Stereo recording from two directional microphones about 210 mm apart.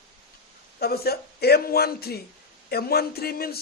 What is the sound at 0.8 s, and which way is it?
A man's voice, 45° left (ahead or behind).